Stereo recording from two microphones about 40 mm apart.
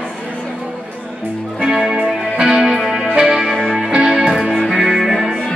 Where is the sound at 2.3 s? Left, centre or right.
Centre.